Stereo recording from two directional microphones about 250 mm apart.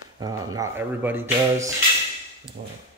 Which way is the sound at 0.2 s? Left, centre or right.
Centre.